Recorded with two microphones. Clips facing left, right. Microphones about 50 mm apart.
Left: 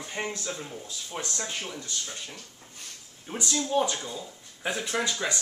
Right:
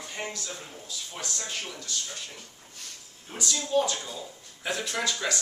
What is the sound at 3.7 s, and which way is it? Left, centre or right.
Speech, centre.